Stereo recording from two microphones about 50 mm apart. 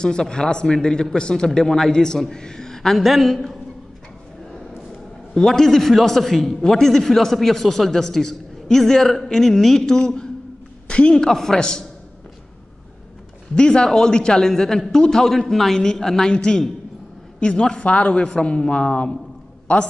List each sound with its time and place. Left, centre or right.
0.0 s a man's voice: centre
5.3 s a man's voice: centre
13.6 s a man's voice: centre